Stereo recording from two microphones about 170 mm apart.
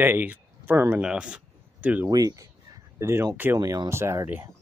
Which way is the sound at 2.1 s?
20° right (ahead or behind).